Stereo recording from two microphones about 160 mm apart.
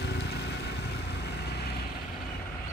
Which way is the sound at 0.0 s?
90° left.